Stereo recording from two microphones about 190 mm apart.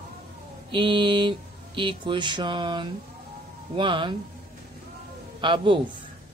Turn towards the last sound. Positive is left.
turn(degrees=-25)  # may be behind; listen again after turning